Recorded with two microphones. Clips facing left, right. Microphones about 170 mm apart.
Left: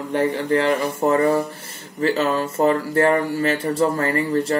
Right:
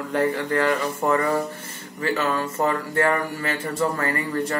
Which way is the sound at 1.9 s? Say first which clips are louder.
Left 4 dB; 30° left (ahead or behind).